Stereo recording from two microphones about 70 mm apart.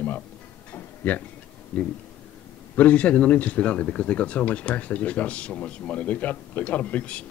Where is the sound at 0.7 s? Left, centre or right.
Left.